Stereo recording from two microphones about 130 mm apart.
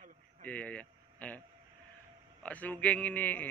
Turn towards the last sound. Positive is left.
turn(degrees=15)  # may be behind; listen again after turning